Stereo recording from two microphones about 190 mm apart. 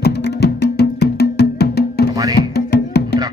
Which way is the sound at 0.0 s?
60° left (ahead or behind).